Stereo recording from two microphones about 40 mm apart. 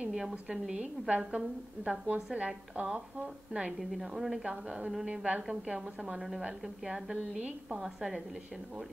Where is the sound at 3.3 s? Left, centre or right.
Centre.